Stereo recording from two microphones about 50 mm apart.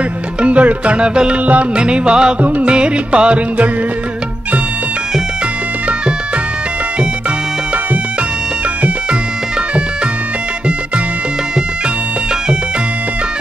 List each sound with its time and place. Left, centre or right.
0.4 s music: right
1.4 s music: right
1.8 s music: centre
2.4 s music: right
2.7 s music: right